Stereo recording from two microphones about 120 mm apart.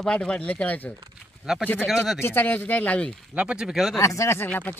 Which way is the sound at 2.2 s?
15° left (ahead or behind).